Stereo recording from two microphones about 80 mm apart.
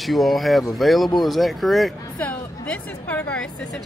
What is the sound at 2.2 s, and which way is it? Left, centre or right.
A woman's voice, centre.